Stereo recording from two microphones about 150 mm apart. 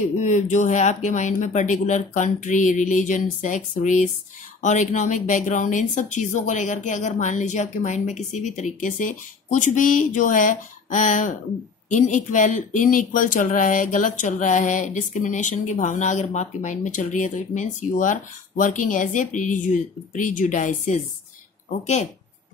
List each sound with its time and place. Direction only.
0.2 s speech: 55° left (ahead or behind)